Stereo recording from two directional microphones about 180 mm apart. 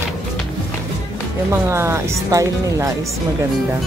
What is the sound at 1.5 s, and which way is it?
Speech, 15° right (ahead or behind).